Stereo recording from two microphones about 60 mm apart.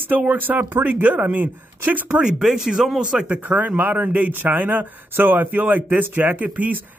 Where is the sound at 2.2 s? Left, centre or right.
Centre.